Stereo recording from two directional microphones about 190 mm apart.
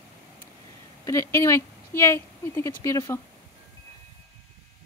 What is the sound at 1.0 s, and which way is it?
Speech, 15° left (ahead or behind).